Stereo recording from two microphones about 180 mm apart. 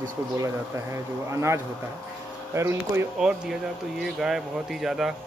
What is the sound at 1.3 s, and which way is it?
Speech, 15° right (ahead or behind).